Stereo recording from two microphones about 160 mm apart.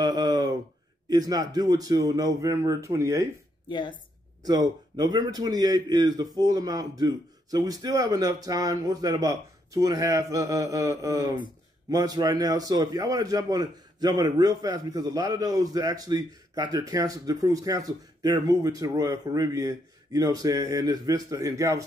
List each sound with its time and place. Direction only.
0.0 s a sound: 25° right (ahead or behind)
1.0 s a man's voice: 25° right (ahead or behind)
3.6 s speech: 30° left (ahead or behind)
4.5 s a man's voice: 25° right (ahead or behind)